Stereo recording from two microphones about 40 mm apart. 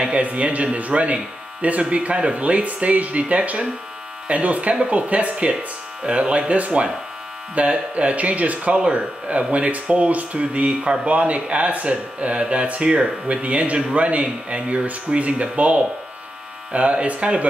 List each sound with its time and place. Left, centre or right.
0.0 s speech: right